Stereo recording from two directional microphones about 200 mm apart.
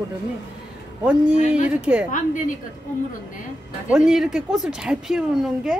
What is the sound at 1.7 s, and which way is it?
Speech, 5° right (ahead or behind).